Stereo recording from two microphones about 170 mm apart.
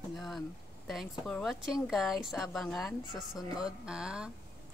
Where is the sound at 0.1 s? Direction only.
Centre (ahead or behind).